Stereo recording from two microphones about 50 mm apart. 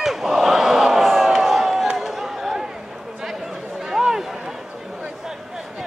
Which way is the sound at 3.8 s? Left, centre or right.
Centre.